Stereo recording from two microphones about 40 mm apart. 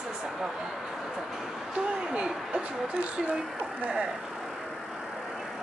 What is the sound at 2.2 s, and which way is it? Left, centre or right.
Speech, right.